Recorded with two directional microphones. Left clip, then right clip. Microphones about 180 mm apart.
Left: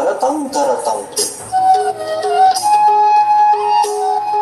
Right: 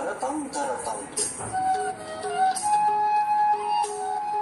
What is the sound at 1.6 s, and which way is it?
Music, 45° left (ahead or behind).